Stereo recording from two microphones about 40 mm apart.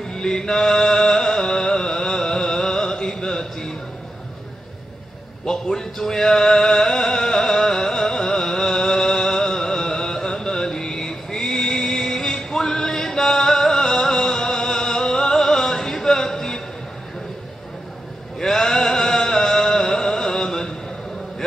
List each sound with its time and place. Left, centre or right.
0.0 s music: centre
5.4 s music: centre
18.4 s music: centre